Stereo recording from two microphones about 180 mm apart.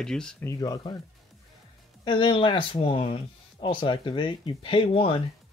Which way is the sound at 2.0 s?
25° left (ahead or behind).